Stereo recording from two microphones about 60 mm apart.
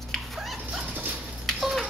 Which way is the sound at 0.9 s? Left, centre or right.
Right.